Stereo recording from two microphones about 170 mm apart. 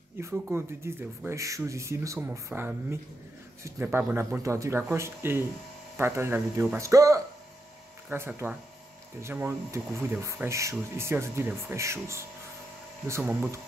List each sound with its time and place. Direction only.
0.2 s speech: 15° right (ahead or behind)